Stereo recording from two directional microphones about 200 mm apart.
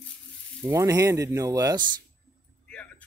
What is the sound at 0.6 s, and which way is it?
Speech, 15° right (ahead or behind).